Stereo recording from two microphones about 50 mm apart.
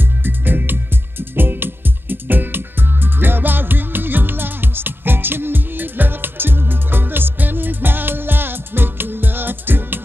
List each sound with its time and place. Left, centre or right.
0.2 s music: right